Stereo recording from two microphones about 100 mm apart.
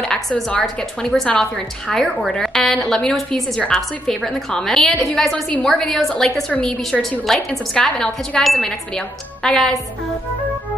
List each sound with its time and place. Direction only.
0.0 s a woman's voice: 5° left (ahead or behind)